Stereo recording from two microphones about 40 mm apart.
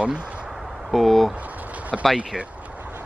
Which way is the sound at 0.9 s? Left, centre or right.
Centre.